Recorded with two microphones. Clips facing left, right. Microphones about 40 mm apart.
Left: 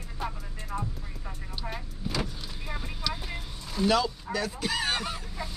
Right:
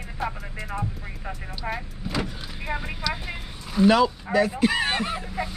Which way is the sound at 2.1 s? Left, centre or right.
Right.